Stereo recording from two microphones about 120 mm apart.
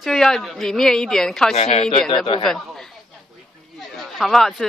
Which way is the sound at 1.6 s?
60° left (ahead or behind).